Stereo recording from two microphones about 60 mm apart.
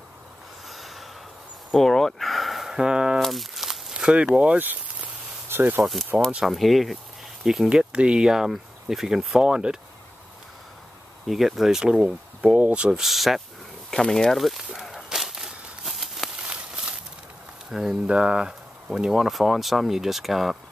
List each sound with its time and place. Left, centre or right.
0.7 s snort: centre
1.7 s speech: centre
3.2 s a sound: centre
3.9 s a sound: centre
5.5 s speech: right
6.4 s speech: centre
7.7 s speech: centre
11.2 s speech: centre; by 12.8 s right
12.8 s speech: centre
13.8 s speech: centre
14.8 s a sound: centre
16.4 s a sound: centre
17.6 s speech: centre